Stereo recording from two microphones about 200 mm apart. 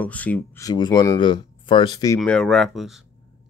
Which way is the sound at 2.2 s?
Centre (ahead or behind).